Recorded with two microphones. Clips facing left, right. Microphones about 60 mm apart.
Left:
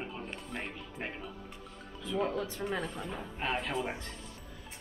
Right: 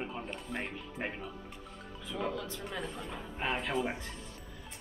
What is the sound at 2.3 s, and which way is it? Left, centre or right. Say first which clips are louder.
Speech: left 4 dB; left.